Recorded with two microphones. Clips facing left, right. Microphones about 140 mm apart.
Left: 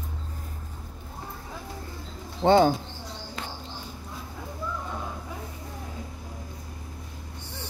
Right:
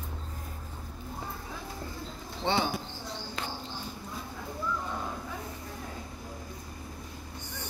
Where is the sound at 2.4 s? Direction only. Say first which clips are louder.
Left 11 dB; 45° left (ahead or behind).